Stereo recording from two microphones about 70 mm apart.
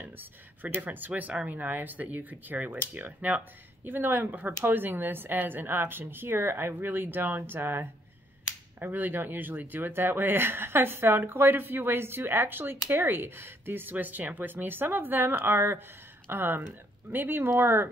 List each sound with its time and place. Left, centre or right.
0.0 s speech: right